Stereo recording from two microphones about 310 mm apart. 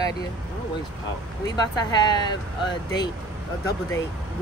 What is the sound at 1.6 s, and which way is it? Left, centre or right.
Speech, centre.